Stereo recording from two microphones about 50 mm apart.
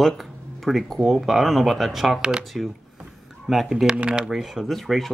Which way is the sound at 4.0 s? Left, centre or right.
Centre.